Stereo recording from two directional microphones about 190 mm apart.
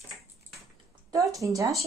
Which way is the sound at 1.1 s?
20° right (ahead or behind).